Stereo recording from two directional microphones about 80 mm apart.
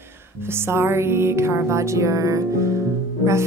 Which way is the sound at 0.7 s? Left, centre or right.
Right.